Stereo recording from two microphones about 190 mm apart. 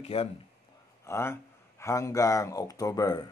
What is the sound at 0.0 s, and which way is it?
Speech, 30° left (ahead or behind).